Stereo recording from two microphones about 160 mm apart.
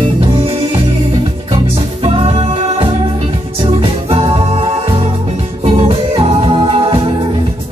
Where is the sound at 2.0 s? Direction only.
40° right (ahead or behind).